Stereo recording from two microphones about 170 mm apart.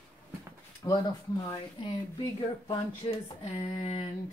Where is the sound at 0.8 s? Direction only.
20° left (ahead or behind).